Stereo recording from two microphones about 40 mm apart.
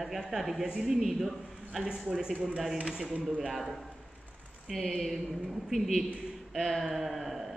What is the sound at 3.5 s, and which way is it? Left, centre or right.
Speech, centre.